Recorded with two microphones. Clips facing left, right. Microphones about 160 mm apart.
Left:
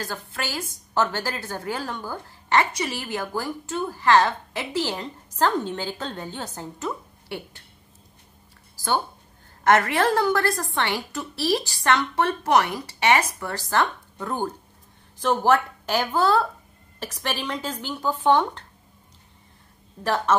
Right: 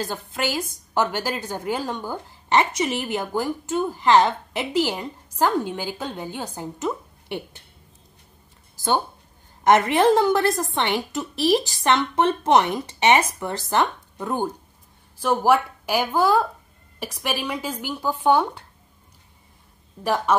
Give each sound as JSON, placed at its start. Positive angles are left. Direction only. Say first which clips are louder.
{"t": 0.0, "sound": "a woman's voice", "louder": "right 5 dB", "side_deg": -20}
{"t": 8.7, "sound": "a sound", "louder": "right 2 dB", "side_deg": -20}
{"t": 9.6, "sound": "a woman's voice", "louder": "right 3 dB", "side_deg": -20}
{"t": 20.0, "sound": "a woman's voice", "louder": "right 1 dB", "side_deg": -10}